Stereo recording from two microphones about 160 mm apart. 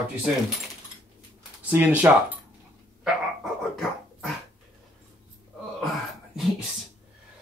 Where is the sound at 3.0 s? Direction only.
Centre (ahead or behind).